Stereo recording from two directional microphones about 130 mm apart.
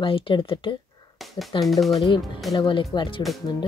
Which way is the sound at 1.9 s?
35° left (ahead or behind).